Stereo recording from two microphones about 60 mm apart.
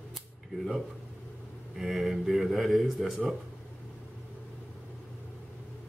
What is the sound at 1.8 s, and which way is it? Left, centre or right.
Speech, centre.